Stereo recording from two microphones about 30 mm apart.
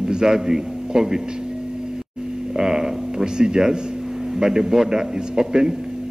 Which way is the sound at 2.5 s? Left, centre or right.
Centre.